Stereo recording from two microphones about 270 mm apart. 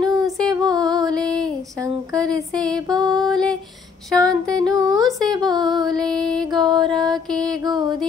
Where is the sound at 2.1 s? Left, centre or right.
Centre.